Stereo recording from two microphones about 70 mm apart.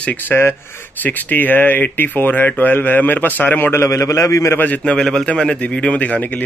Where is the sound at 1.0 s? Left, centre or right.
Left.